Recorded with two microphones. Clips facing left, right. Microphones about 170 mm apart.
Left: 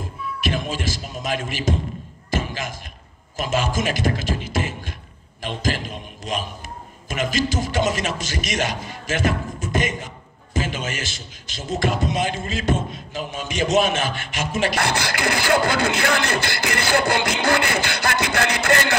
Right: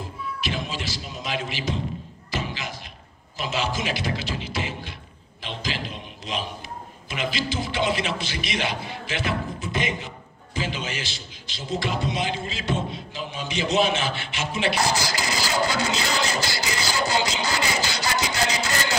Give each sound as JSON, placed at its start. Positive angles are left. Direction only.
{"t": 0.4, "sound": "music", "side_deg": 50}
{"t": 2.3, "sound": "slam", "side_deg": 45}
{"t": 3.3, "sound": "a sound", "side_deg": 45}
{"t": 7.1, "sound": "a man's voice", "side_deg": 45}